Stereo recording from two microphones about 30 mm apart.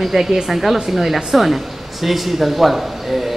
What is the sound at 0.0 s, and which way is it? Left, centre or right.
Speech, centre.